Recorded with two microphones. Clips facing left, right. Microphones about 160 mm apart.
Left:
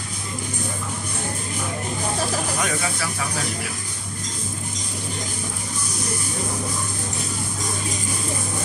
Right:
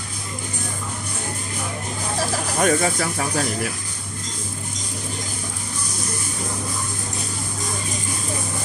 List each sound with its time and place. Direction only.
2.6 s speech: 45° right (ahead or behind)